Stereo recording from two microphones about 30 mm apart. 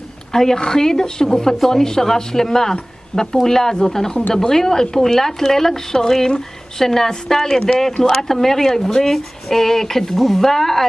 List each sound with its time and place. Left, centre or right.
0.3 s speech: centre